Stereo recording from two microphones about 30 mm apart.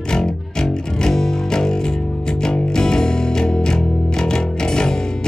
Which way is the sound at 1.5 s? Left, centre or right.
Left.